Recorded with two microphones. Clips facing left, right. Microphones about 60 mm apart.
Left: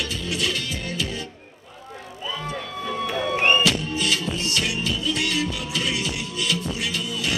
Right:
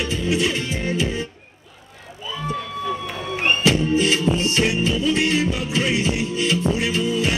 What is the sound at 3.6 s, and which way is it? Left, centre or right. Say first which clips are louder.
Music: right 5 dB; right.